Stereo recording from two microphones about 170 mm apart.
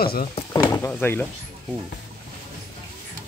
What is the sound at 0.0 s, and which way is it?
Speech, 60° left (ahead or behind).